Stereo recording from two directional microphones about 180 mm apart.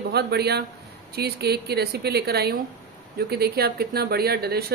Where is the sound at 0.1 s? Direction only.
65° right (ahead or behind).